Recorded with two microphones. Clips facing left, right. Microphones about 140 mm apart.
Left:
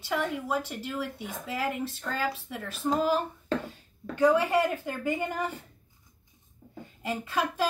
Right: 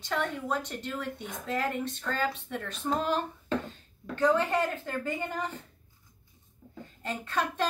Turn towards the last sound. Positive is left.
turn(degrees=5)  # may be behind; listen again after turning